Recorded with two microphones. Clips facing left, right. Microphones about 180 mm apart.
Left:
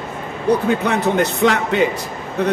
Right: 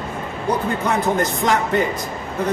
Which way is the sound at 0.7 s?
70° left (ahead or behind).